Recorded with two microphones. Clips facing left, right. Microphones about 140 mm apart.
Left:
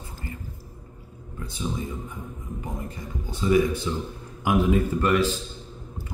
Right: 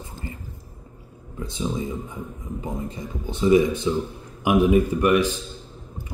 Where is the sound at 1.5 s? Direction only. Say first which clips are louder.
Right 4 dB; 20° right (ahead or behind).